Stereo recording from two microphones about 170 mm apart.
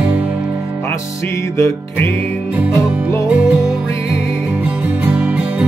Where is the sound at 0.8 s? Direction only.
15° left (ahead or behind).